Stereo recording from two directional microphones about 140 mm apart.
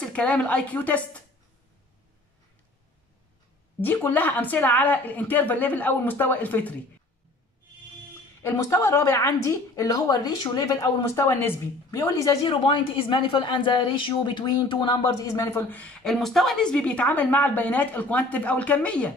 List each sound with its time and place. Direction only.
0.0 s a woman's voice: 5° left (ahead or behind)
3.8 s a woman's voice: 15° left (ahead or behind)
8.4 s a woman's voice: 20° left (ahead or behind)
12.4 s a woman's voice: 35° left (ahead or behind)
15.2 s a woman's voice: 20° left (ahead or behind)